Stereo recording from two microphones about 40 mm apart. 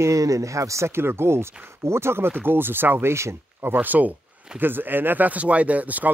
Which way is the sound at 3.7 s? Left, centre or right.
Right.